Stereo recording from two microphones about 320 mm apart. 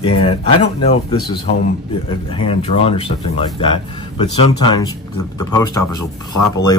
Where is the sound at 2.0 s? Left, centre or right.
Centre.